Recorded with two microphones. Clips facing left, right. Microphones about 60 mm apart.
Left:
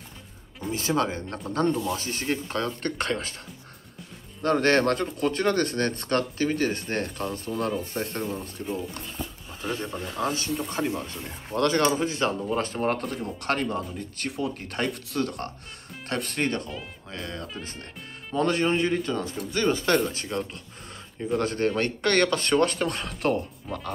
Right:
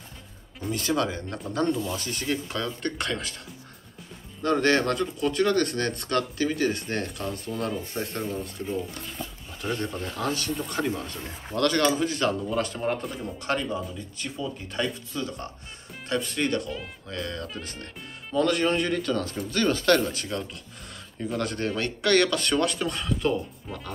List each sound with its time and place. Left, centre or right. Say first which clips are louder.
0.7 s speech: left 1 dB; left
4.4 s speech: left 1 dB; left
8.6 s speech: left 1 dB; centre
9.2 s speech: even; centre
11.1 s speech: even; centre
11.5 s speech: even; left
12.9 s speech: left 1 dB; left
16.4 s speech: right 1 dB; left
20.1 s speech: left 1 dB; left